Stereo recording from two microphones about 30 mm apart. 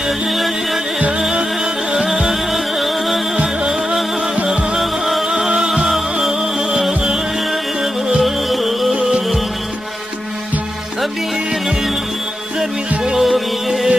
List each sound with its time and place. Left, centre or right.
0.3 s music: centre
2.0 s music: centre
4.7 s music: centre
5.2 s music: centre
8.2 s music: centre
13.1 s music: centre